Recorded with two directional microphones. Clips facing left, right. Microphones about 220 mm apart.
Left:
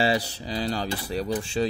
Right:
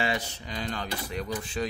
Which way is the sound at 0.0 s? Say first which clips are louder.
Left 6 dB; 35° left (ahead or behind).